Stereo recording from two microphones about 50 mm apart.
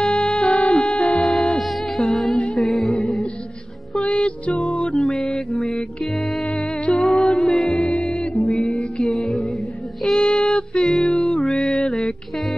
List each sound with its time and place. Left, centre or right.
0.0 s music: centre
1.6 s music: centre
2.9 s music: left
5.2 s mantra: left
5.6 s music: centre
7.0 s music: centre
10.0 s a sound: centre
10.3 s music: left